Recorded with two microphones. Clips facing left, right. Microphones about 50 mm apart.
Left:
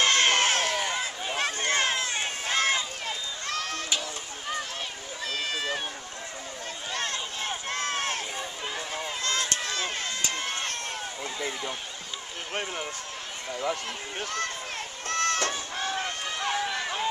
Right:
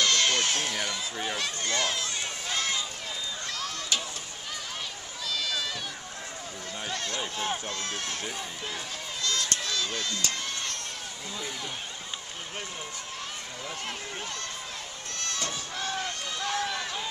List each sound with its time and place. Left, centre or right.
0.0 s run: left
5.2 s run: left
6.9 s run: left
15.0 s run: left
16.0 s run: left
16.5 s run: centre